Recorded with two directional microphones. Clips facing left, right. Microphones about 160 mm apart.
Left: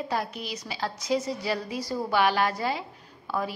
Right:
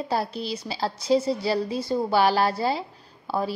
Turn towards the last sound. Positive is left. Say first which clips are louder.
# right 3 dB
turn(degrees=-30)  # may be behind; listen again after turning